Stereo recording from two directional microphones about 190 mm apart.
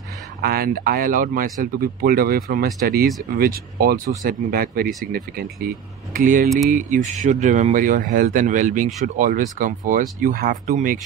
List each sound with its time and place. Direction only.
0.4 s speech: 50° right (ahead or behind)